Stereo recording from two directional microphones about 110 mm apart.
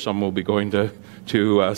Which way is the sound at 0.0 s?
15° right (ahead or behind).